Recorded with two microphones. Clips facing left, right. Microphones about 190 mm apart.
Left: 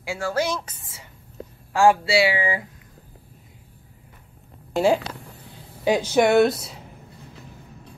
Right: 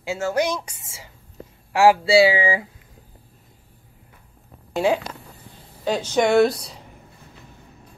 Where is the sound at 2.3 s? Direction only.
90° right.